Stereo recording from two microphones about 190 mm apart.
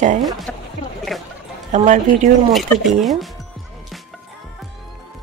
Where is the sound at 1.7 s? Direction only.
40° right (ahead or behind).